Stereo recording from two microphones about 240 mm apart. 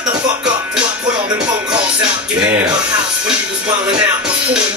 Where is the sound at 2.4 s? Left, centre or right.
Centre.